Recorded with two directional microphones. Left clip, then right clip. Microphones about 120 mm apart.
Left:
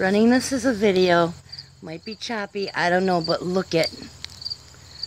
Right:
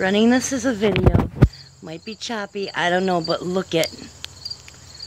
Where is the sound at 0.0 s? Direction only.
25° left (ahead or behind).